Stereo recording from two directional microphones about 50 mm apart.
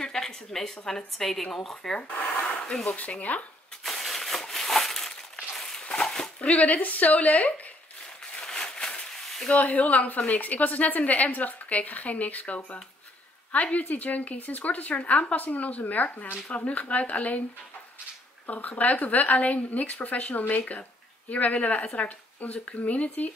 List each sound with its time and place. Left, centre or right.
0.0 s a woman's voice: centre
2.9 s speech: left
3.8 s crushing: centre
5.9 s dog: centre
6.4 s a woman's voice: left
8.3 s a sound: centre
9.5 s a woman's voice: left
18.5 s a woman's voice: left